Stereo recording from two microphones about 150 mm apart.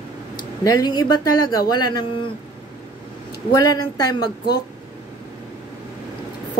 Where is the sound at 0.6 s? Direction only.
25° left (ahead or behind).